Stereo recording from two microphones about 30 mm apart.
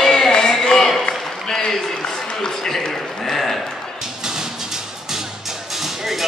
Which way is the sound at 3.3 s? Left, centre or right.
Centre.